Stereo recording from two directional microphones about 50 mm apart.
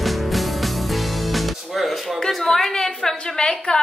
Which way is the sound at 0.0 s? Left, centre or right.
Centre.